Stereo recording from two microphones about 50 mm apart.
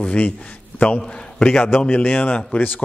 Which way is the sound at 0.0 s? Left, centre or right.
Left.